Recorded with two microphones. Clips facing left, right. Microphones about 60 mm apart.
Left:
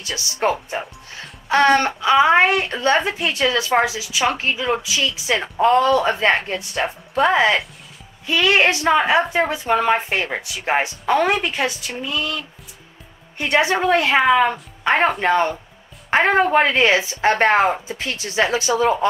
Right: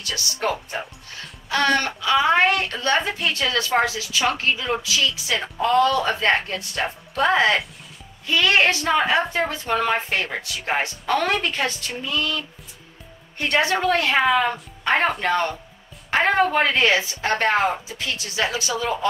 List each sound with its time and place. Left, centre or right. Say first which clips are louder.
0.0 s speech: left 4 dB; left
1.5 s speech: left 5 dB; left
4.5 s speech: left 2 dB; centre
4.8 s speech: left 2 dB; left
6.8 s speech: left 4 dB; centre
8.3 s a woman's voice: left 2 dB; centre
15.2 s speech: left 4 dB; centre